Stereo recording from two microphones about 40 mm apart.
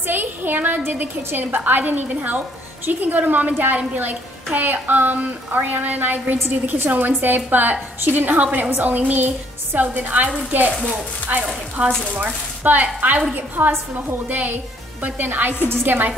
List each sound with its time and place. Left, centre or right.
0.0 s a sound: right
0.9 s a woman's voice: right
12.2 s a woman's voice: right
13.6 s a woman's voice: right
14.3 s a woman's voice: right